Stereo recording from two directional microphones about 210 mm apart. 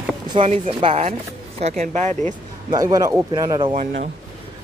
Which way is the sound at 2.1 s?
10° left (ahead or behind).